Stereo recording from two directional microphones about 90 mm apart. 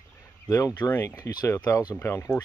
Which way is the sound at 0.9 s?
25° left (ahead or behind).